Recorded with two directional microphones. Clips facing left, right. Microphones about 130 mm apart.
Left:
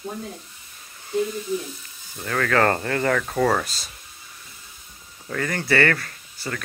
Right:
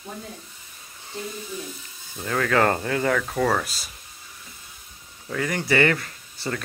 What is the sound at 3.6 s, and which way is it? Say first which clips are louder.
Speech: even; 10° right (ahead or behind).